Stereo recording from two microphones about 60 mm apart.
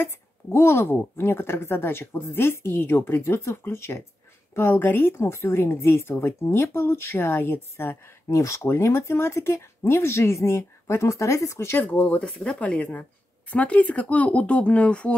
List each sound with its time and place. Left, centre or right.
0.0 s speech: left
8.3 s speech: left
8.6 s speech: left
11.9 s speech: left
12.2 s speech: centre